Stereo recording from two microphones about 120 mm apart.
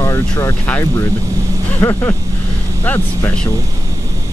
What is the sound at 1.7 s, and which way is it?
Speech, 15° left (ahead or behind).